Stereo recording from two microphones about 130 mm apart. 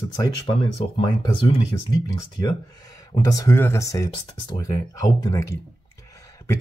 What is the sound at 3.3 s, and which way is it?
Speech, 25° left (ahead or behind).